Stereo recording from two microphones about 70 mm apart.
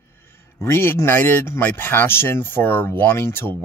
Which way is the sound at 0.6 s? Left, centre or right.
Left.